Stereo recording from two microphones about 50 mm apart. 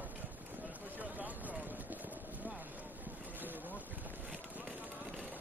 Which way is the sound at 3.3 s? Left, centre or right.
Right.